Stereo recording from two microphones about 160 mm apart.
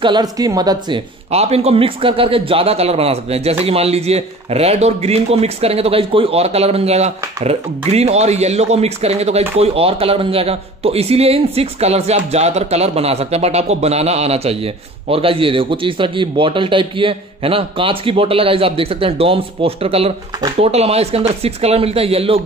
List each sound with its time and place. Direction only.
0.0 s a woman's voice: 25° right (ahead or behind)
1.3 s speech: 40° right (ahead or behind)